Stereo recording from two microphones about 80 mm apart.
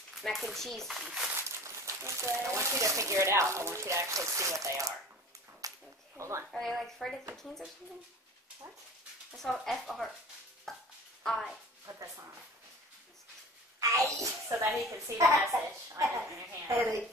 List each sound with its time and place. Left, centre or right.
0.2 s speech: centre
1.0 s speech: centre
1.3 s speech: right
5.6 s a sound: right
6.1 s speech: right
6.5 s speech: centre
9.3 s speech: centre
10.7 s music: centre
11.2 s speech: centre
13.7 s a woman's voice: right